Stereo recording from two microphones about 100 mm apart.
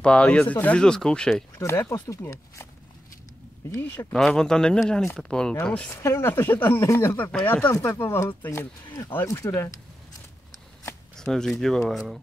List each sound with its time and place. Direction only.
0.0 s speech: 10° left (ahead or behind)
1.6 s speech: 30° left (ahead or behind)
3.7 s speech: 20° left (ahead or behind)
4.1 s speech: 5° left (ahead or behind)
5.9 s speech: 30° left (ahead or behind)
11.1 s speech: 5° left (ahead or behind)